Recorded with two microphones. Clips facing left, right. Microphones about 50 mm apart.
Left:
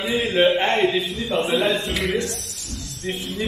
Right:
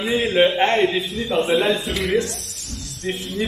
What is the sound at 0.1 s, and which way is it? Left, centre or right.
Mantra, centre.